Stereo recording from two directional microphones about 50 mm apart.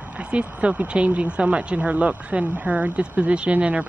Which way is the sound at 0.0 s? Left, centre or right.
Right.